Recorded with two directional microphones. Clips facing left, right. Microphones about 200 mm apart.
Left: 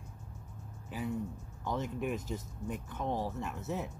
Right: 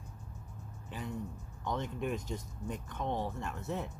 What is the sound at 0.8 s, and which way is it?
Speech, 5° left (ahead or behind).